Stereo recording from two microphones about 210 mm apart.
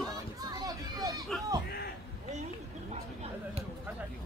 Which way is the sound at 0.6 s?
15° right (ahead or behind).